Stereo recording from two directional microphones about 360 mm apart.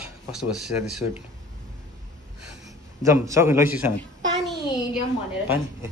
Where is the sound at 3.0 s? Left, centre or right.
Centre.